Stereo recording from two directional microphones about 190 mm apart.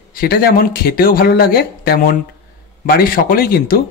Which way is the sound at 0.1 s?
55° left (ahead or behind).